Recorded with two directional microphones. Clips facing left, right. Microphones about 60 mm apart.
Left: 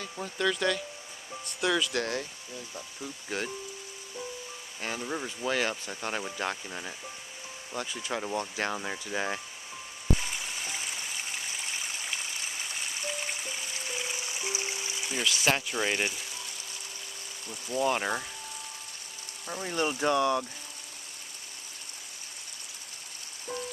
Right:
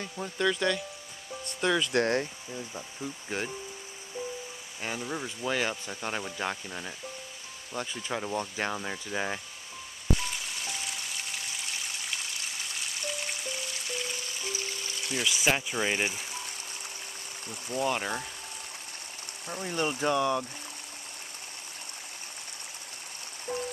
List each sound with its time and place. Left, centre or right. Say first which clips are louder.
0.2 s speech: right 1 dB; centre
1.8 s speech: right 4 dB; right
3.0 s speech: right 1 dB; centre
4.8 s speech: even; centre
10.2 s stream: even; centre
15.2 s speech: even; centre
17.8 s speech: left 2 dB; centre
19.5 s speech: left 1 dB; centre
19.9 s speech: left 1 dB; centre